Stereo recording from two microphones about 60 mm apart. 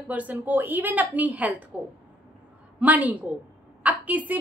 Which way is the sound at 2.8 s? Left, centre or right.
Right.